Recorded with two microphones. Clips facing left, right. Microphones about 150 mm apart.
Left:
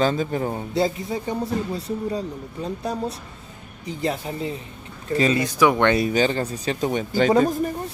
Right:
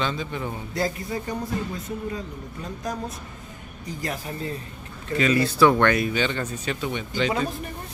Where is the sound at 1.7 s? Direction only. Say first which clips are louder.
Left 5 dB; 35° left (ahead or behind); by 5.9 s 15° left (ahead or behind).